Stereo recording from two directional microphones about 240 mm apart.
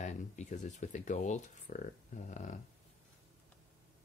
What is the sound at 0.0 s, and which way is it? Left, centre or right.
Speech, left.